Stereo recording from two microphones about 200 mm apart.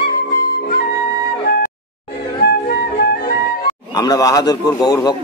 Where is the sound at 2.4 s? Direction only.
55° left (ahead or behind).